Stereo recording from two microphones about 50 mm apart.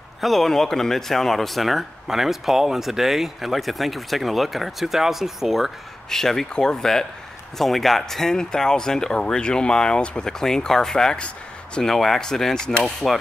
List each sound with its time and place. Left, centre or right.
0.2 s a man's voice: centre
6.0 s speech: centre